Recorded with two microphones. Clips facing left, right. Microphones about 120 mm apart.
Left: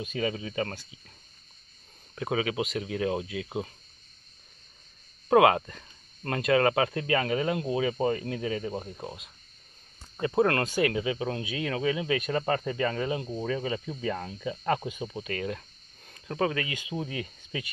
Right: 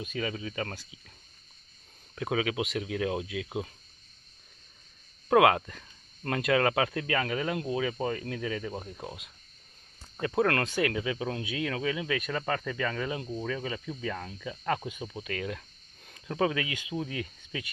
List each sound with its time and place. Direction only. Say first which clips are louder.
0.0 s speech: left 3 dB; centre (ahead or behind)
0.7 s speech: left 2 dB; 5° right (ahead or behind)
2.1 s speech: left 1 dB; centre (ahead or behind)
5.3 s speech: left 2 dB; centre (ahead or behind)
8.9 s speech: left 2 dB; 5° right (ahead or behind)
10.2 s speech: left 2 dB; 10° left (ahead or behind)